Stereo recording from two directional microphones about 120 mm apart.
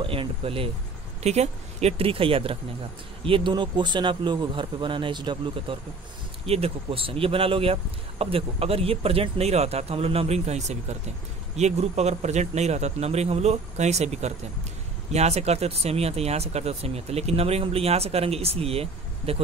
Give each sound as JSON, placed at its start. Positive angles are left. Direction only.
{"t": 0.0, "sound": "speech", "side_deg": -50}
{"t": 1.2, "sound": "speech", "side_deg": -65}
{"t": 6.4, "sound": "speech", "side_deg": -55}